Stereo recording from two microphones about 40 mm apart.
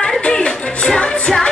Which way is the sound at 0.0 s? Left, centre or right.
Left.